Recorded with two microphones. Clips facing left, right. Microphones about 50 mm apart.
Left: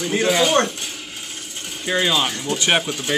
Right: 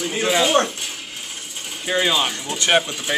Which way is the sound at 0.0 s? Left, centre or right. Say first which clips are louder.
Left 1 dB; centre.